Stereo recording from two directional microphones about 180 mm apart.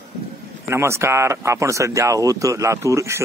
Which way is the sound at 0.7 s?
15° right (ahead or behind).